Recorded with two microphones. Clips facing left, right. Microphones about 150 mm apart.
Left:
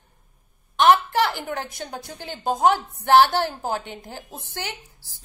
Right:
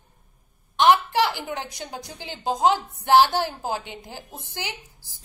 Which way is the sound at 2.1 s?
50° left (ahead or behind).